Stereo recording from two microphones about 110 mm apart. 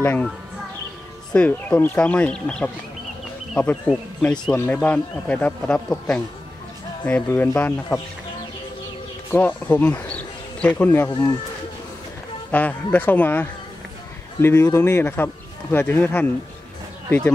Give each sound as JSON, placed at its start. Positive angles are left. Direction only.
{"t": 0.0, "sound": "speech", "side_deg": 15}
{"t": 1.3, "sound": "speech", "side_deg": 10}
{"t": 9.3, "sound": "speech", "side_deg": 15}
{"t": 11.1, "sound": "speech", "side_deg": 35}
{"t": 12.4, "sound": "speech", "side_deg": 15}